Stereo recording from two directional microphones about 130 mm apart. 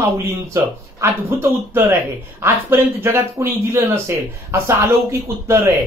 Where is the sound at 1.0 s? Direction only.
20° right (ahead or behind).